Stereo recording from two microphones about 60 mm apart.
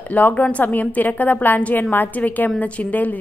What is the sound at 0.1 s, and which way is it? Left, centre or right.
A woman's voice, left.